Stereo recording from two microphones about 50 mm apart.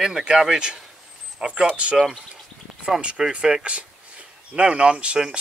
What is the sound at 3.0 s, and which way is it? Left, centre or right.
Speech, right.